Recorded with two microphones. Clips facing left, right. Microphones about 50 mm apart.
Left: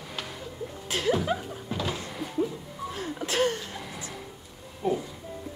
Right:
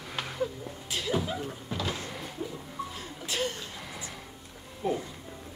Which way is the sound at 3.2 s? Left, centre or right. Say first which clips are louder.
Left 6 dB; left.